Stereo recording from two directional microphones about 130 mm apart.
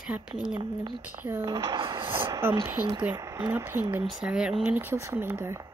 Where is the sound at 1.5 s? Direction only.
25° right (ahead or behind).